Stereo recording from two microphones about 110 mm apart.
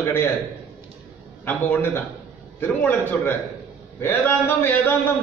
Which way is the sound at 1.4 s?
20° left (ahead or behind).